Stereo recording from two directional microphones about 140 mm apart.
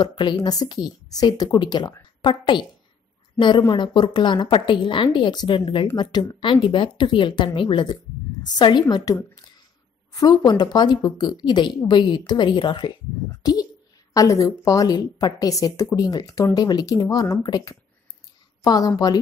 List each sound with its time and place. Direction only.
0.0 s a woman's voice: 35° left (ahead or behind)